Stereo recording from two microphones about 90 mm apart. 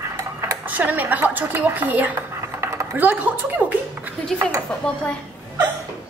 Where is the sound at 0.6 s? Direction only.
20° right (ahead or behind).